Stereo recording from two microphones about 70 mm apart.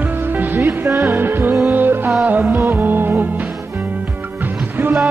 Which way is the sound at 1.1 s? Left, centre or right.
Right.